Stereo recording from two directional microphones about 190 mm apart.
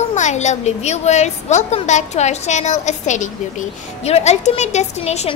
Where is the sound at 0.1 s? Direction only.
40° left (ahead or behind).